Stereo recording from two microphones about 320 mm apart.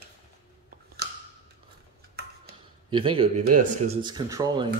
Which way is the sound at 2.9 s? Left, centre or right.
Centre.